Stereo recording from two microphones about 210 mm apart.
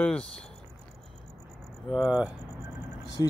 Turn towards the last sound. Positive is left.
turn(degrees=15)  # may be behind; listen again after turning